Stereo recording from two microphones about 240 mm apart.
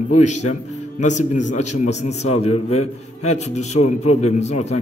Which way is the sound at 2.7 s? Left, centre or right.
Left.